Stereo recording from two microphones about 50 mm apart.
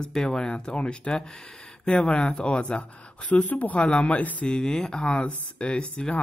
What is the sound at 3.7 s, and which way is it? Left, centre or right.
Speech, centre.